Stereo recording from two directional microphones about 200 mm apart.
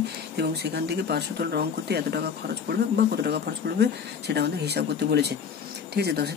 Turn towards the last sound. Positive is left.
turn(degrees=-55)  # may be behind; listen again after turning